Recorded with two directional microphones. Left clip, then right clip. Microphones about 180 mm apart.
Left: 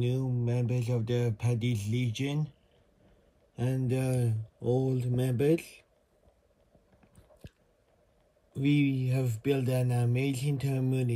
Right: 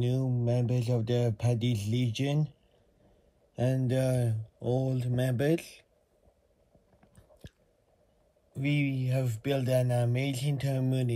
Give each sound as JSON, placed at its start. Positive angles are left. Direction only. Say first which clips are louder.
{"t": 0.0, "sound": "speech", "louder": "right 1 dB", "side_deg": -50}
{"t": 3.5, "sound": "speech", "louder": "right 3 dB", "side_deg": -10}
{"t": 8.5, "sound": "speech", "louder": "left 3 dB", "side_deg": 5}